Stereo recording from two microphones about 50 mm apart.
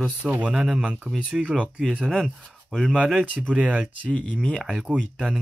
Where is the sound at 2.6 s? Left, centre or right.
Centre.